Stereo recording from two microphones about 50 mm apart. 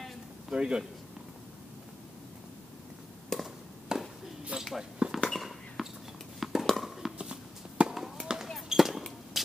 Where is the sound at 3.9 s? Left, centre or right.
Centre.